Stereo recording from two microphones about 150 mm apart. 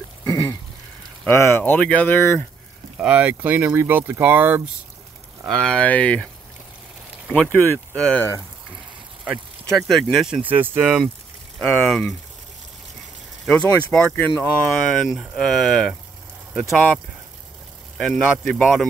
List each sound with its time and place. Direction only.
0.2 s a sound: 25° left (ahead or behind)
1.2 s speech: 15° left (ahead or behind)
3.0 s speech: 10° right (ahead or behind)
5.6 s speech: 5° left (ahead or behind)
7.3 s speech: 15° left (ahead or behind)
9.2 s speech: centre (ahead or behind)
10.4 s speech: 10° right (ahead or behind)
11.5 s speech: 5° left (ahead or behind)
13.5 s speech: 5° left (ahead or behind)
14.7 s speech: centre (ahead or behind)